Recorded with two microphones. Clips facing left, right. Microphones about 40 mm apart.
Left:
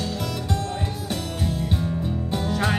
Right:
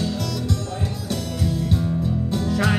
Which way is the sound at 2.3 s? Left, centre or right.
Centre.